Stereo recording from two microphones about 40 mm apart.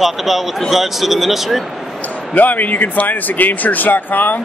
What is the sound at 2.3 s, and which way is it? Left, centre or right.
Speech, left.